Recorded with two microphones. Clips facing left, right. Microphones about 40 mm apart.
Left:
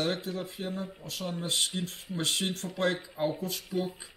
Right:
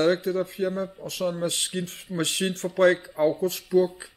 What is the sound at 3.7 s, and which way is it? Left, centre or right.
Speech, right.